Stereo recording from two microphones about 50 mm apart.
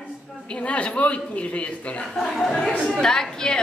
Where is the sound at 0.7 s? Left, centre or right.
Left.